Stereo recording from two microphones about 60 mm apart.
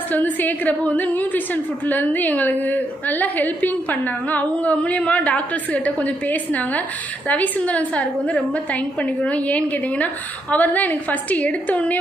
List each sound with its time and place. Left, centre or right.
0.1 s a woman's voice: left